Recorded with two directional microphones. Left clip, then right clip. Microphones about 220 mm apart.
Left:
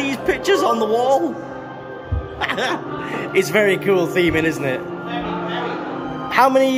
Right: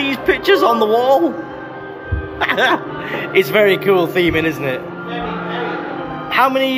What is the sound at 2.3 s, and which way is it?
A man's voice, 10° left (ahead or behind).